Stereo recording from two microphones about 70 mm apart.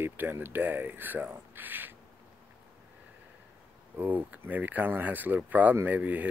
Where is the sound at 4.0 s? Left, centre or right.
Right.